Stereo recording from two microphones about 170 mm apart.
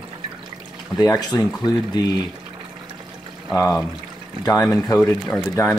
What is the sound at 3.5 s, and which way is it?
Speech, 20° left (ahead or behind).